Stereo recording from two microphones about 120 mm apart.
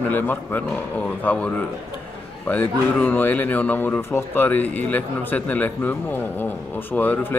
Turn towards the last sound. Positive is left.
turn(degrees=15)  # may be behind; listen again after turning